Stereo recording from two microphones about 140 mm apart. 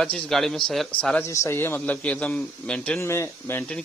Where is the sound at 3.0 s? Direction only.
20° left (ahead or behind).